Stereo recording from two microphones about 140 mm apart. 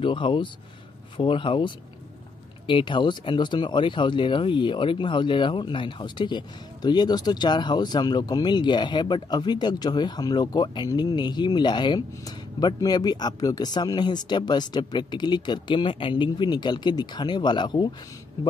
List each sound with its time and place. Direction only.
0.0 s speech: 35° left (ahead or behind)